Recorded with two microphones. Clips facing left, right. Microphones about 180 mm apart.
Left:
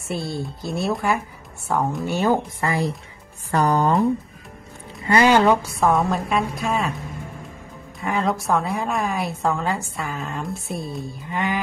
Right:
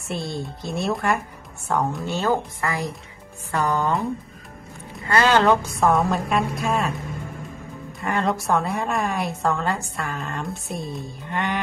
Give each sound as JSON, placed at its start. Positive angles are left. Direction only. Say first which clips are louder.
{"t": 0.1, "sound": "a woman's voice", "louder": "left 2 dB", "side_deg": 5}
{"t": 2.0, "sound": "speech", "louder": "left 4 dB", "side_deg": 15}
{"t": 2.6, "sound": "a woman's voice", "louder": "left 4 dB", "side_deg": 25}
{"t": 5.0, "sound": "a woman's voice", "louder": "left 2 dB", "side_deg": 15}
{"t": 8.0, "sound": "a woman's voice", "louder": "left 1 dB", "side_deg": 0}